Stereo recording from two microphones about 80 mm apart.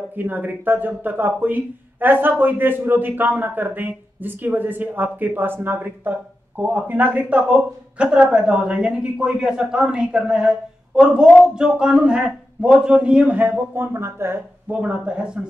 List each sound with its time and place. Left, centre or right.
0.1 s speech: right
14.7 s speech: centre